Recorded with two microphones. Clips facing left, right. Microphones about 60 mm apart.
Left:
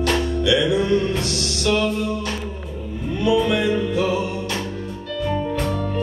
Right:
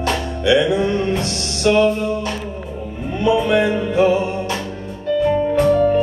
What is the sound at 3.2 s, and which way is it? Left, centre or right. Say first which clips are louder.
Music: right 3 dB; right.